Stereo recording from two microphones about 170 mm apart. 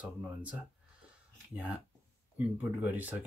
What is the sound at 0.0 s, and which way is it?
Speech, 10° right (ahead or behind).